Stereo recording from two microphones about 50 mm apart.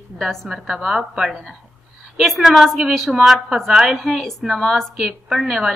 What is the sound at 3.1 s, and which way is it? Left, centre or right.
A woman's voice, centre.